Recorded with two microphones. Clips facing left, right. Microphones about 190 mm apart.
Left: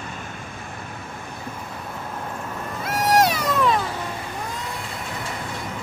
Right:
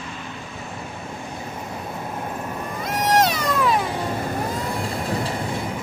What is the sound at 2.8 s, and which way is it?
Cat, 5° left (ahead or behind).